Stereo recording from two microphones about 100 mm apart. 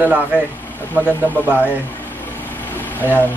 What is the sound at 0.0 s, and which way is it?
Speech, 15° right (ahead or behind).